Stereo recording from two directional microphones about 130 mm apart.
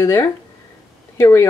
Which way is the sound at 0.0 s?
25° left (ahead or behind).